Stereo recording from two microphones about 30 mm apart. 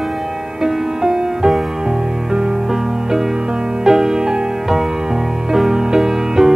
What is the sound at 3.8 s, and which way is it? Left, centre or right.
Music, centre.